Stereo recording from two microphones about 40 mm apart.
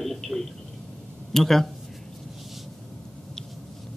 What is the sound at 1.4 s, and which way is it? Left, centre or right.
Speech, centre.